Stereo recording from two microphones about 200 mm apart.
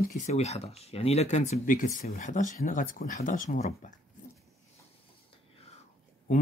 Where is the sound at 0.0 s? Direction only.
35° left (ahead or behind).